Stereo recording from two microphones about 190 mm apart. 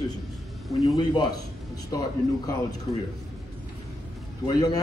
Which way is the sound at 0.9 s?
20° left (ahead or behind).